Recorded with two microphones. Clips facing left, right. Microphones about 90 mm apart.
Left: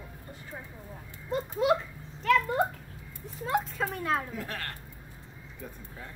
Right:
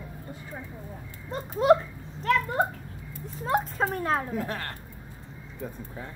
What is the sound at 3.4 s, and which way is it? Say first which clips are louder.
Speech: right 3 dB; 35° right (ahead or behind).